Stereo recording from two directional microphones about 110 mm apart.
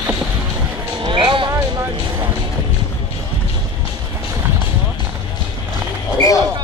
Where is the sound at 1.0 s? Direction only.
50° right (ahead or behind).